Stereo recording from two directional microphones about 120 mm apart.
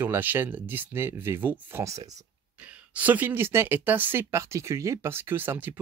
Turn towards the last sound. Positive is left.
turn(degrees=-15)  # may be behind; listen again after turning